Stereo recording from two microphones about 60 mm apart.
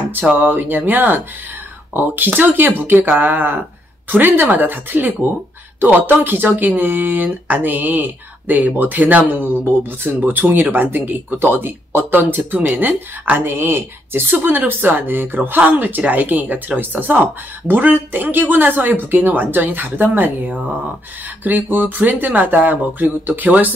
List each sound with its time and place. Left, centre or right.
0.1 s speech: right